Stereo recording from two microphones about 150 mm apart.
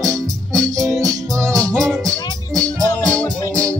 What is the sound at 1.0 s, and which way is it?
Music, 20° right (ahead or behind).